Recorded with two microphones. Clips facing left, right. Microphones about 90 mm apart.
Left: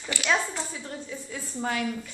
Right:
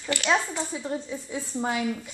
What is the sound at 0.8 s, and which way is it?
Speech, 20° right (ahead or behind).